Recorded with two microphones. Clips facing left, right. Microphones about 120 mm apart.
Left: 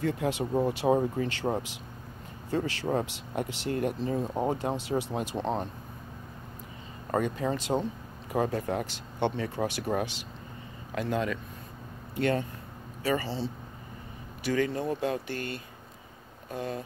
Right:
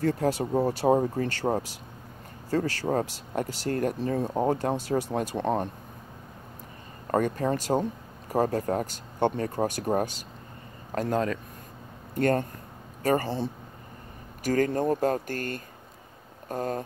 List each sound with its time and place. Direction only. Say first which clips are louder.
0.0 s speech: right 3 dB; 40° right (ahead or behind)
4.5 s speech: right 3 dB; 50° right (ahead or behind)
7.1 s speech: right 3 dB; 50° right (ahead or behind)